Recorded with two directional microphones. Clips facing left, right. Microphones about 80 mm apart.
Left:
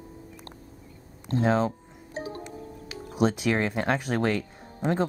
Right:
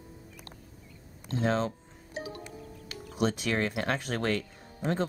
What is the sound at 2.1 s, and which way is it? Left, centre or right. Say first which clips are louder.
Music: left 4 dB; left.